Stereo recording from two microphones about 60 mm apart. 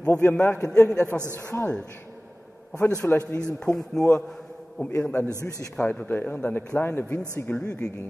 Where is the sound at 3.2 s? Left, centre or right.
Left.